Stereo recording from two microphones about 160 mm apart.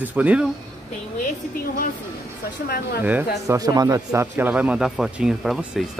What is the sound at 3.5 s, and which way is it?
Speech, 25° right (ahead or behind).